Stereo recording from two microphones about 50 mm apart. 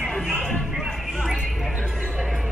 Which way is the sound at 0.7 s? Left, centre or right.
Centre.